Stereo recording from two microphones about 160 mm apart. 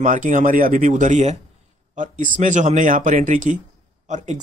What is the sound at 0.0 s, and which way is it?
Speech, 55° right (ahead or behind).